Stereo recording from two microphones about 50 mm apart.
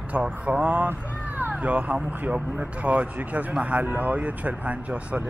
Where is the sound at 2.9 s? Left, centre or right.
Right.